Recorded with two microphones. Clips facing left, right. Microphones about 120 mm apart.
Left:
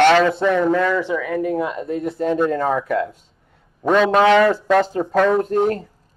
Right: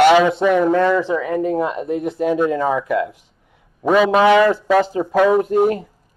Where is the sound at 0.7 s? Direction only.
25° right (ahead or behind).